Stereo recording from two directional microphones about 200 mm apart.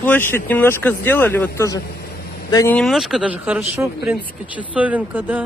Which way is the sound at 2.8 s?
Centre (ahead or behind).